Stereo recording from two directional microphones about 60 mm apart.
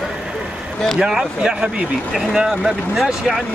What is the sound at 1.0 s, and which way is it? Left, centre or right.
Speech, centre.